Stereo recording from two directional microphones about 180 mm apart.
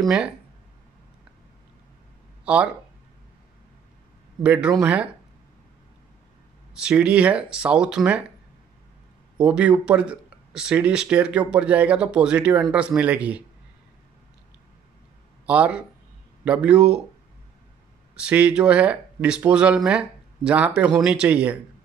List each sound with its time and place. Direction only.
0.0 s speech: 5° right (ahead or behind)
2.4 s speech: 5° right (ahead or behind)
4.4 s speech: 5° right (ahead or behind)
6.7 s speech: 5° right (ahead or behind)
9.4 s speech: 5° right (ahead or behind)
15.4 s speech: 5° right (ahead or behind)
18.1 s speech: 5° right (ahead or behind)